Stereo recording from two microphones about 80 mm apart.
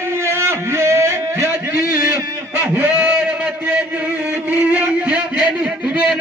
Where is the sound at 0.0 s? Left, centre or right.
Right.